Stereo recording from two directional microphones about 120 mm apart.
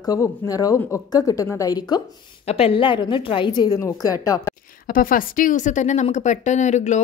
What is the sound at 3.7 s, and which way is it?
Speech, 25° left (ahead or behind).